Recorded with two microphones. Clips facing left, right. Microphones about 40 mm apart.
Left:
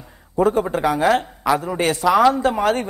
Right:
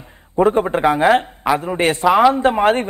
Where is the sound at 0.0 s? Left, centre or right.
Right.